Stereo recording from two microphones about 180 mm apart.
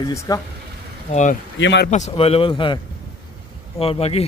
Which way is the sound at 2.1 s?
30° left (ahead or behind).